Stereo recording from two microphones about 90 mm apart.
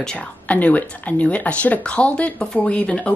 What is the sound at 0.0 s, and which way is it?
A woman's voice, 10° left (ahead or behind).